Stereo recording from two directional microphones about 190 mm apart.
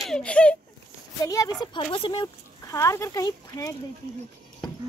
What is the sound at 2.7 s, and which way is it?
Speech, 15° left (ahead or behind).